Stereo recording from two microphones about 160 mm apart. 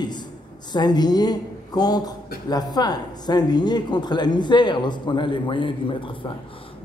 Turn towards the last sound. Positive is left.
turn(degrees=30)  # may be behind; listen again after turning